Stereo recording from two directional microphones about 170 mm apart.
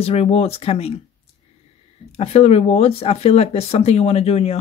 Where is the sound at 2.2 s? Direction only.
40° left (ahead or behind).